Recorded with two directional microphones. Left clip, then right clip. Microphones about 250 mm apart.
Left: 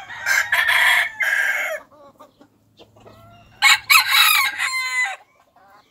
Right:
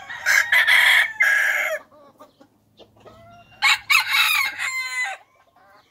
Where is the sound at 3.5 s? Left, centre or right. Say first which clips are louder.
Left 4 dB; left.